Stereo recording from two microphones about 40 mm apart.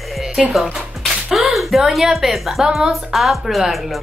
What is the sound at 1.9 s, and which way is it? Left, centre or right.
A woman's voice, centre.